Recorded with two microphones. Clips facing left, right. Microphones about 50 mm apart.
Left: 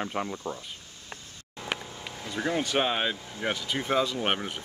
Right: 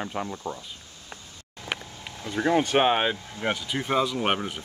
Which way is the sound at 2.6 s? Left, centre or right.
Right.